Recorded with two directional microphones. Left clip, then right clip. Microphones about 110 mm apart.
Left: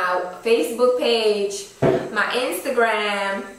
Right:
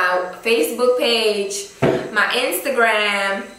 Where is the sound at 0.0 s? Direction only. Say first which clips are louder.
Right 3 dB; 5° right (ahead or behind).